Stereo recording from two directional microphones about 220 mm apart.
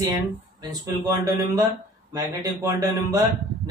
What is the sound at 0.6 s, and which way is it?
Speech, 15° right (ahead or behind).